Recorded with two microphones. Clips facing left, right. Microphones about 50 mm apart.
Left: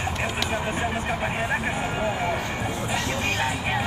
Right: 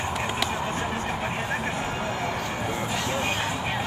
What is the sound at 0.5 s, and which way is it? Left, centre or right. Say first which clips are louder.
Vehicle: left 2 dB; centre.